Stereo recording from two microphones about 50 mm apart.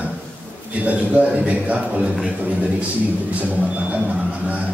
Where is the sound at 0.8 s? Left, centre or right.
Right.